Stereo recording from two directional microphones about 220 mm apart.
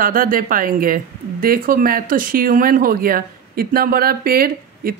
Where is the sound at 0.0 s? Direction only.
40° right (ahead or behind).